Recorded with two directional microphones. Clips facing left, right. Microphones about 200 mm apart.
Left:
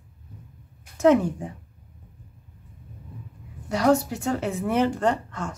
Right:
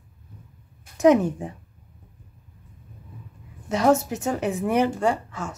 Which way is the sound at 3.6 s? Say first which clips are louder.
Right 1 dB; 20° right (ahead or behind).